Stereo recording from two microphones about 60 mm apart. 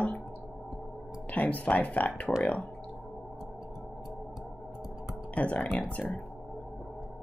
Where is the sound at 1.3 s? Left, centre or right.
Left.